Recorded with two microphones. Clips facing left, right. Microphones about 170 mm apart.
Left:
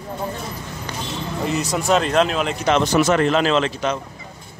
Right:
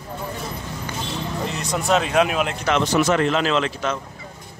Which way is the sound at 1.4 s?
Centre (ahead or behind).